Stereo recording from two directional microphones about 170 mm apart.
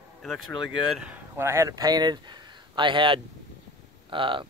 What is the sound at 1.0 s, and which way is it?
Speech, 10° right (ahead or behind).